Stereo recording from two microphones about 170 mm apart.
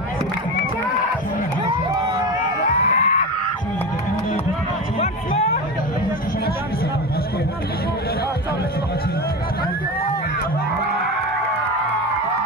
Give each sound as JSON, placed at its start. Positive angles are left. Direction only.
{"t": 2.6, "sound": "music", "side_deg": 50}
{"t": 5.0, "sound": "music", "side_deg": 35}